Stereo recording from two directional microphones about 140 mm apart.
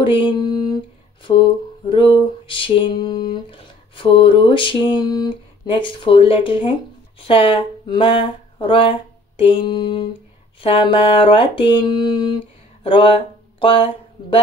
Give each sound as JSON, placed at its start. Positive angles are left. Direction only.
{"t": 0.0, "sound": "mantra", "side_deg": 35}
{"t": 12.8, "sound": "speech", "side_deg": 40}